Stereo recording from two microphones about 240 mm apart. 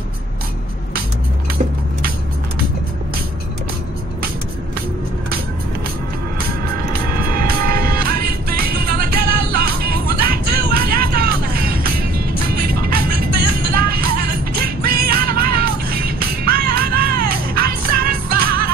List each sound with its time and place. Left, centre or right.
7.3 s music: right
13.3 s music: right
13.7 s music: right
17.1 s music: right
17.6 s music: right